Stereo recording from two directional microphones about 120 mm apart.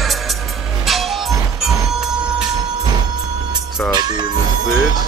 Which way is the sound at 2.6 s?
35° right (ahead or behind).